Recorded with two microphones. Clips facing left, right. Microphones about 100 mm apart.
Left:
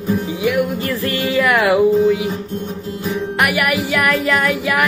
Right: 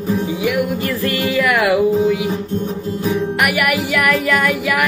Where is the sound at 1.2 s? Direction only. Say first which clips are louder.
Left 1 dB; 25° left (ahead or behind).